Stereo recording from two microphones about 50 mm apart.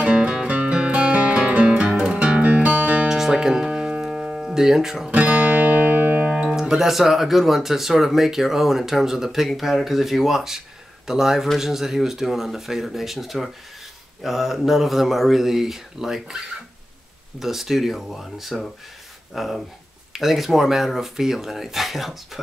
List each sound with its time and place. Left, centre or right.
0.0 s music: centre
3.1 s music: centre
5.1 s music: right
6.5 s speech: centre
17.4 s speech: centre